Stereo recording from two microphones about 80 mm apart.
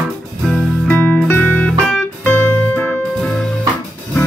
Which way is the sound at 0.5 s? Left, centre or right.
Centre.